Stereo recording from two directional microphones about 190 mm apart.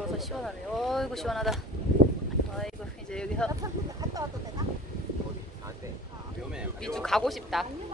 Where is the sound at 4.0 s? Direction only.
20° right (ahead or behind).